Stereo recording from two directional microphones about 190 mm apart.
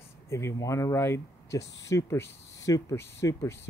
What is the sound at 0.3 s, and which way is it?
Speech, 15° left (ahead or behind).